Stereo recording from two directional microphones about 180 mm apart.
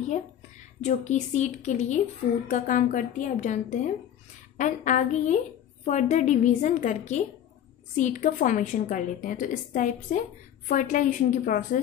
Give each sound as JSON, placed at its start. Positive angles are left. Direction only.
{"t": 0.7, "sound": "a woman's voice", "side_deg": 40}